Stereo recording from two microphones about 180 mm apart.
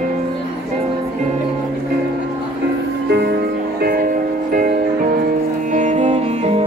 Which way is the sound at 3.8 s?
55° right (ahead or behind).